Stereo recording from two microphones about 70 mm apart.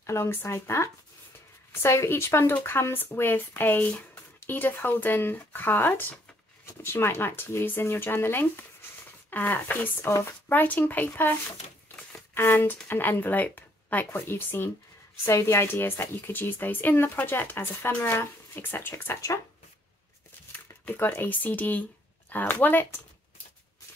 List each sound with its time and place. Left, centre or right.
0.0 s a woman's voice: left
12.1 s a sound: left
12.8 s a woman's voice: left
20.8 s speech: left